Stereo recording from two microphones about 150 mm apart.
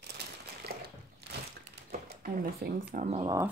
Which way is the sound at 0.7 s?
90° right.